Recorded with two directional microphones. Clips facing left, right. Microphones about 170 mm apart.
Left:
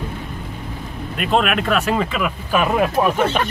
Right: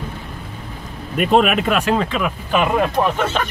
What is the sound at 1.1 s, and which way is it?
Speech, 5° right (ahead or behind).